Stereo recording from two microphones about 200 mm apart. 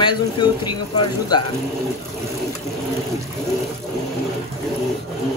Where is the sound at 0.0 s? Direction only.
20° left (ahead or behind).